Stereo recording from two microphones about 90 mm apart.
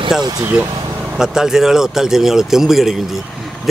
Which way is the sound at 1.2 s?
5° right (ahead or behind).